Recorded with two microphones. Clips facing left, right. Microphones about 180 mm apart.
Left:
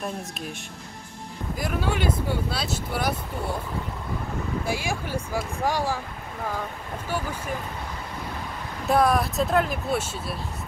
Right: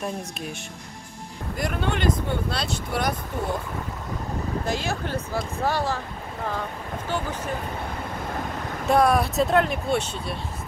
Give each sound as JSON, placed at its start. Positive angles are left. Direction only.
{"t": 0.0, "sound": "speech", "side_deg": 0}
{"t": 1.6, "sound": "speech", "side_deg": 5}
{"t": 4.6, "sound": "speech", "side_deg": 10}
{"t": 8.8, "sound": "speech", "side_deg": 0}